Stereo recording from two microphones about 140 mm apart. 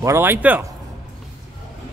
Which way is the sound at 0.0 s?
15° right (ahead or behind).